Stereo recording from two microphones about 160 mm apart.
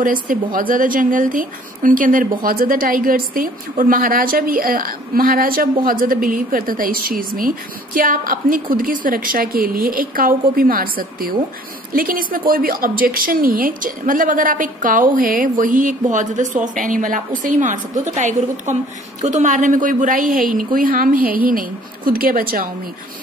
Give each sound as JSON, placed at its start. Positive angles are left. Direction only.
{"t": 0.0, "sound": "a woman's voice", "side_deg": -60}